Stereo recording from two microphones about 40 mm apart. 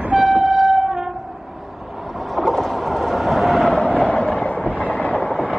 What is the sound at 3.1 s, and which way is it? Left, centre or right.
Vehicle, centre.